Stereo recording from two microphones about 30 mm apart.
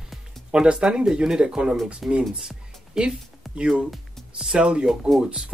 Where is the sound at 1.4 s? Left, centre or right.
Right.